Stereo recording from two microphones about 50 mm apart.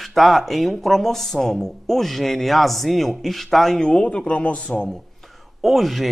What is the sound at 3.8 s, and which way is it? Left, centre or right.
Speech, centre.